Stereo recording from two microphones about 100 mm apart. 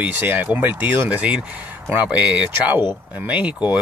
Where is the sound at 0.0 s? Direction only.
15° right (ahead or behind).